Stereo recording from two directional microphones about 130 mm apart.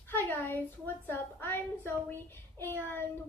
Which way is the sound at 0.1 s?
15° left (ahead or behind).